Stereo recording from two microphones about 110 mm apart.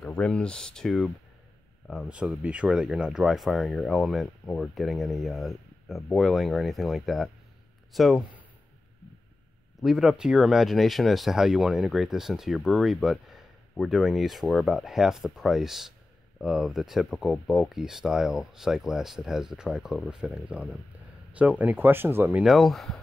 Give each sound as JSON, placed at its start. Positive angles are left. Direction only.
{"t": 0.0, "sound": "speech", "side_deg": 10}
{"t": 9.8, "sound": "speech", "side_deg": -5}
{"t": 22.4, "sound": "speech", "side_deg": 0}